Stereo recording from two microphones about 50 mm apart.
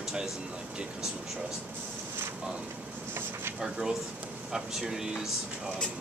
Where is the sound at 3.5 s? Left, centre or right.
Centre.